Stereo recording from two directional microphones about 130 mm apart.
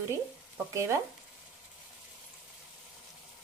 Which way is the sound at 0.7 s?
25° right (ahead or behind).